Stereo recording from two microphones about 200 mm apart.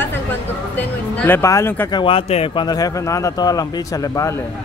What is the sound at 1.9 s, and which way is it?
Speech, 25° left (ahead or behind).